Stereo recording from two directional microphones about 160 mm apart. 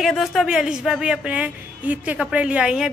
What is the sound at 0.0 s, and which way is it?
Speech, centre (ahead or behind).